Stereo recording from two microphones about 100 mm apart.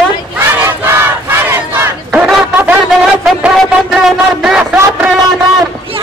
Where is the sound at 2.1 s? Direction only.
5° right (ahead or behind).